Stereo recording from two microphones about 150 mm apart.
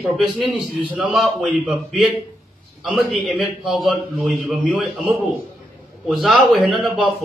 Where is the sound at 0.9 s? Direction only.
5° right (ahead or behind).